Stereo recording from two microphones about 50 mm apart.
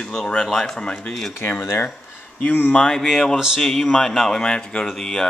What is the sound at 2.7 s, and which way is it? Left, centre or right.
Speech, centre.